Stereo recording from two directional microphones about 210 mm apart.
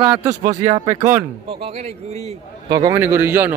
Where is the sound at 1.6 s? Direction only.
30° right (ahead or behind).